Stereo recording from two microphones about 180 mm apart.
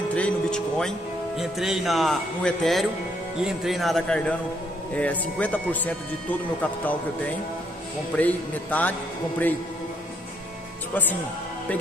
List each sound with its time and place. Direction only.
0.1 s speech: 5° left (ahead or behind)
8.2 s speech: 10° left (ahead or behind)